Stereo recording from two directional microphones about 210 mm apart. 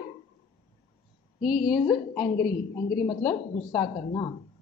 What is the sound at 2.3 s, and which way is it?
Speech, 45° left (ahead or behind).